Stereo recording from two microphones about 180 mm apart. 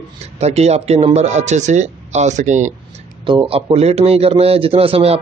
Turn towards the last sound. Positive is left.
turn(degrees=-35)  # may be behind; listen again after turning